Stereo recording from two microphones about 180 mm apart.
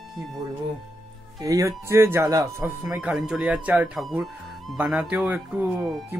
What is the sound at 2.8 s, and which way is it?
Speech, 5° right (ahead or behind).